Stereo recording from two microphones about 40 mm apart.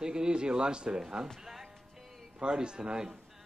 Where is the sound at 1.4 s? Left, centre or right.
Centre.